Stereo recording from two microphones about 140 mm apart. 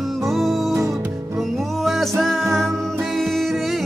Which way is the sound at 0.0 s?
Centre (ahead or behind).